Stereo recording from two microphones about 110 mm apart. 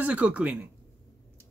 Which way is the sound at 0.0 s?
15° right (ahead or behind).